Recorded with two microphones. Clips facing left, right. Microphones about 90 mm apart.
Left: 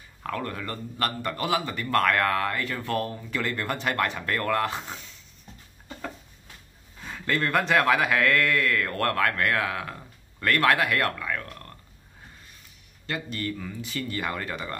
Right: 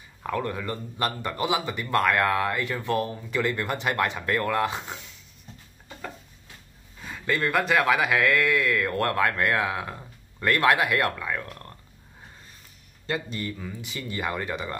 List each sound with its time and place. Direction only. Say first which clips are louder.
0.2 s speech: right 3 dB; 15° right (ahead or behind)
7.1 s speech: even; 5° right (ahead or behind)
13.0 s a man's voice: right 3 dB; 25° right (ahead or behind)
13.4 s speech: left 2 dB; 10° right (ahead or behind)